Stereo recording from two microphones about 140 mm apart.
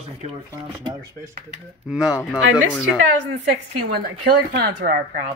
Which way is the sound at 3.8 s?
90° right.